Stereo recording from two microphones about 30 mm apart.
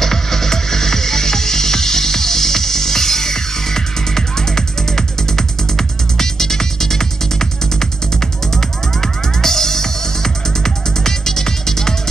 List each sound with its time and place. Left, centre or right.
0.0 s music: centre